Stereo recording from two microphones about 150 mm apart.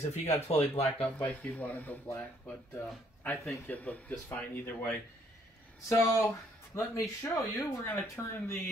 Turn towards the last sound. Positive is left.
turn(degrees=15)  # may be behind; listen again after turning